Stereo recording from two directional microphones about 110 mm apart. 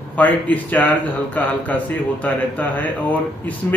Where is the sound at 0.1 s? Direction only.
15° left (ahead or behind).